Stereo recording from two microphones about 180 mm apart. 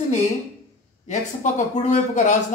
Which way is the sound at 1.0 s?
40° left (ahead or behind).